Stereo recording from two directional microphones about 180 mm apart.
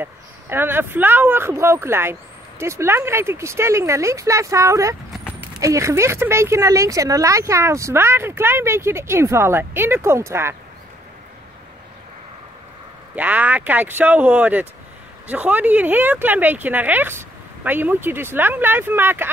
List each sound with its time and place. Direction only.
0.0 s speech: 10° right (ahead or behind)
13.1 s speech: 10° right (ahead or behind)